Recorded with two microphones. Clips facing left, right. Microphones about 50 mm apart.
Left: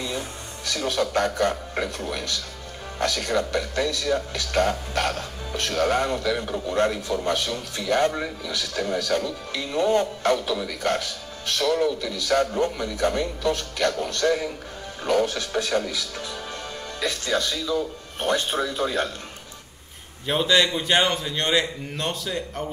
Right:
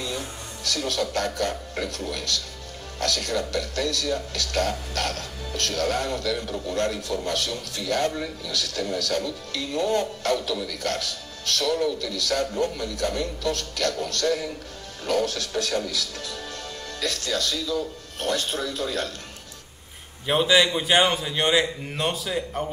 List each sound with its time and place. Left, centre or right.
0.7 s speech: left
20.2 s a man's voice: centre